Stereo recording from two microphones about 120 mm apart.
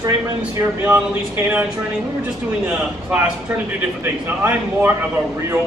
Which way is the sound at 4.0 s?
15° right (ahead or behind).